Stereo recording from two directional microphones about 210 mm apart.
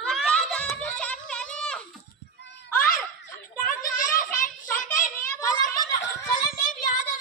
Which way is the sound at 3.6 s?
40° left (ahead or behind).